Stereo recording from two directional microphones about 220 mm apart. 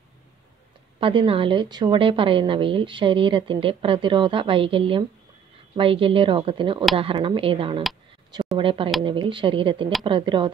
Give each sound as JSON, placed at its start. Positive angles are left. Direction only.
{"t": 0.9, "sound": "a woman's voice", "side_deg": -25}